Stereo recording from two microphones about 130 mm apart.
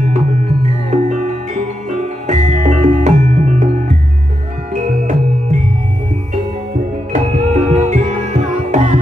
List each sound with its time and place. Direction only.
0.8 s music: 70° right (ahead or behind)
4.8 s music: 75° right (ahead or behind)
7.1 s music: 65° right (ahead or behind)